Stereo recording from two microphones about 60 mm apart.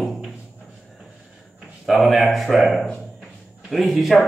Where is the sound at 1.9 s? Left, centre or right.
Centre.